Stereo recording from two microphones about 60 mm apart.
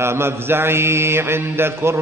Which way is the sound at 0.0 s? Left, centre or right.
Right.